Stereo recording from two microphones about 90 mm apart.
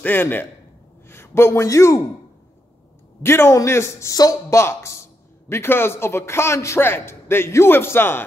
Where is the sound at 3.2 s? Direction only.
30° left (ahead or behind).